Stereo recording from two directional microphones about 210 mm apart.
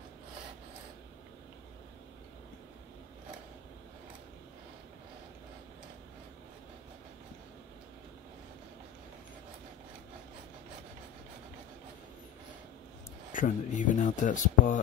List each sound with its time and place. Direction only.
13.3 s speech: 40° left (ahead or behind)